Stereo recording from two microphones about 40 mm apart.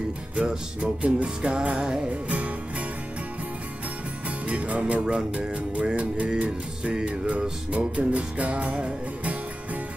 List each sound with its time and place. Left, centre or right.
0.4 s music: right
4.5 s music: right
5.0 s speech: right
5.9 s music: right
6.8 s music: centre
7.1 s music: right